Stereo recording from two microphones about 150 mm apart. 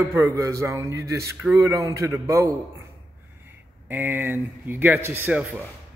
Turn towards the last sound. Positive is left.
turn(degrees=-10)  # may be behind; listen again after turning